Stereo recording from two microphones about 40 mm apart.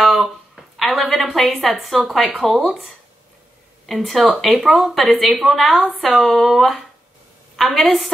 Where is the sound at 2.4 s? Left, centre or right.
Centre.